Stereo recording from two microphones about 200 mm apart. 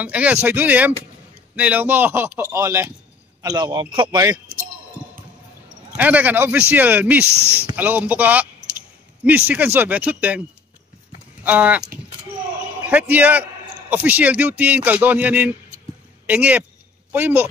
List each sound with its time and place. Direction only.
0.0 s a man's voice: 5° right (ahead or behind)
5.9 s a man's voice: 5° right (ahead or behind)
9.5 s a man's voice: 10° right (ahead or behind)
11.4 s a man's voice: 10° right (ahead or behind)
13.1 s a man's voice: 5° right (ahead or behind)